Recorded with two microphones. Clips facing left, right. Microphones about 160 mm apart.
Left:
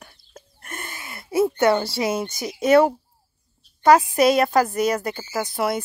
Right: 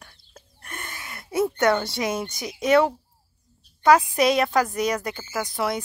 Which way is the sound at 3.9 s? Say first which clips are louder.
Left 4 dB; 5° left (ahead or behind).